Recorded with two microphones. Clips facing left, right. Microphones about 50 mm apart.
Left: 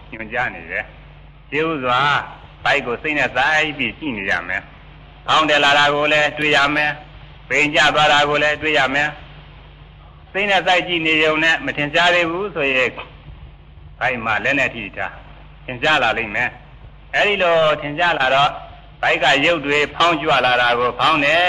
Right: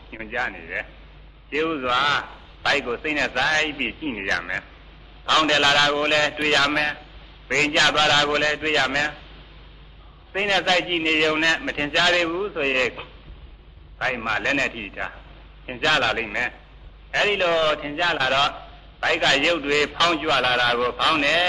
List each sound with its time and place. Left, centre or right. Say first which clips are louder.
0.3 s a man's voice: left 5 dB; left
6.7 s a man's voice: left 4 dB; centre
7.4 s a man's voice: left 4 dB; left
10.3 s a man's voice: left 5 dB; left
20.6 s a man's voice: left 5 dB; centre